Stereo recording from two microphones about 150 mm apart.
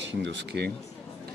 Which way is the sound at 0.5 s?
10° left (ahead or behind).